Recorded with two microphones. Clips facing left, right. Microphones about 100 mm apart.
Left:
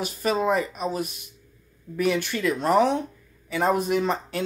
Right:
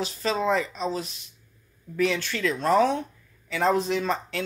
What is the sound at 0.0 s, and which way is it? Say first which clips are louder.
Speech: left 2 dB; 10° left (ahead or behind).